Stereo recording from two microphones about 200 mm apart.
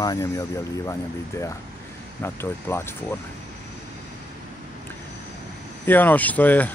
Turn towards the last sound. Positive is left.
turn(degrees=10)  # may be behind; listen again after turning